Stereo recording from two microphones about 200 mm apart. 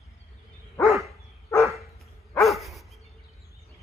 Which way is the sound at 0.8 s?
Centre (ahead or behind).